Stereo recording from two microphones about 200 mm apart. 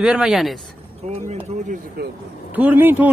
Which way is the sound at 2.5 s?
10° right (ahead or behind).